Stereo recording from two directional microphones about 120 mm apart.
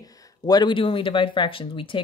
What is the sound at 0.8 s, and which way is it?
Speech, 45° left (ahead or behind).